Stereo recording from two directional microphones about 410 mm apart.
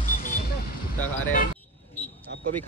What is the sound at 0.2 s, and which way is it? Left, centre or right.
Vehicle, left.